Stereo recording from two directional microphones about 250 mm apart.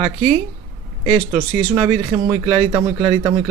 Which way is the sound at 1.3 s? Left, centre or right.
Centre.